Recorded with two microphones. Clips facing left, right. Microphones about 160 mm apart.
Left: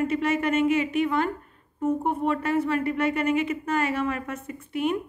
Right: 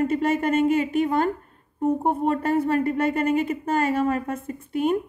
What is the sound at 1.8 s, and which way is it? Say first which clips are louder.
A woman's voice: right 3 dB; 35° right (ahead or behind).